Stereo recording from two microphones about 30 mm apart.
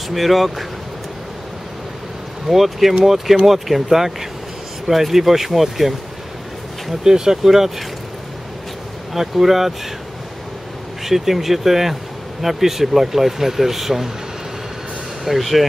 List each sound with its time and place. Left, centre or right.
0.1 s speech: centre
2.4 s speech: centre
7.1 s speech: right
9.1 s speech: centre
11.1 s speech: centre
15.2 s speech: centre